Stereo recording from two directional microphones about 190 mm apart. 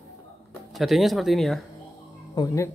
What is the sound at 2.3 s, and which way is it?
Speech, 15° left (ahead or behind).